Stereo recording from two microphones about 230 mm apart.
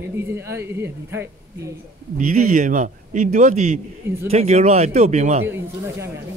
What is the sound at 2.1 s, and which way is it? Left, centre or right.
Speech, right.